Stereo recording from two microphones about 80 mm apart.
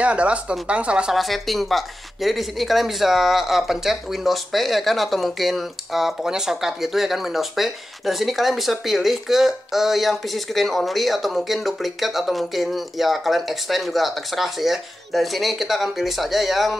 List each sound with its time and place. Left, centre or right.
0.0 s speech: centre
1.1 s speech: centre